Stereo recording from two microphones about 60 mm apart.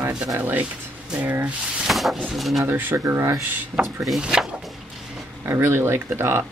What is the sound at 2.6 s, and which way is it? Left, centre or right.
Speech, right.